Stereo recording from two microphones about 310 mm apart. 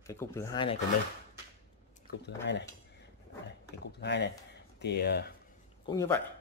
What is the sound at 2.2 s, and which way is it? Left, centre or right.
Speech, left.